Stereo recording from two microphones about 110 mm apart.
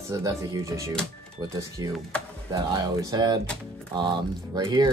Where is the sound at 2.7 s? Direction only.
40° right (ahead or behind).